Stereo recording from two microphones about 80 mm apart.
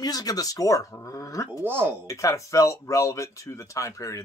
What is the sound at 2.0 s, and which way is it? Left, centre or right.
Speech, left.